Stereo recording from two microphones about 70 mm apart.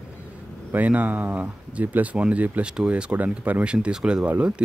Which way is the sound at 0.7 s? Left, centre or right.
Right.